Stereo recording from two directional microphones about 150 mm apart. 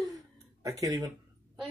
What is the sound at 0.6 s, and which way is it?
Speech, 25° right (ahead or behind).